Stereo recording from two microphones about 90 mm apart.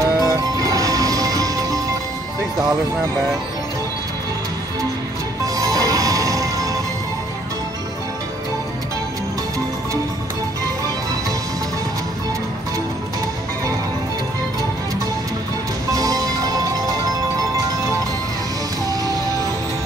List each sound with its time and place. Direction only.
0.0 s music: 40° right (ahead or behind)
5.6 s music: 40° right (ahead or behind)
15.9 s music: 40° right (ahead or behind)